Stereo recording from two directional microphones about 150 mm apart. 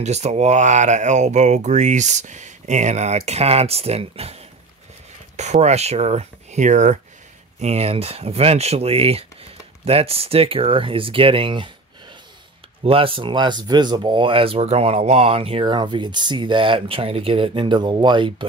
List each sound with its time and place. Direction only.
0.0 s speech: 50° right (ahead or behind)
12.8 s speech: 40° right (ahead or behind)